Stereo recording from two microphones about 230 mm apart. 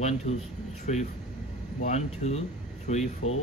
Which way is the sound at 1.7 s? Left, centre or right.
Left.